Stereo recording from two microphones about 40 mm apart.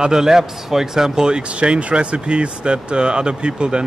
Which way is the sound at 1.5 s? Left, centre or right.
Right.